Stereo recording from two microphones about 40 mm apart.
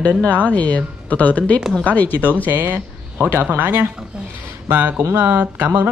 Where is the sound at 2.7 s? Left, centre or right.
Right.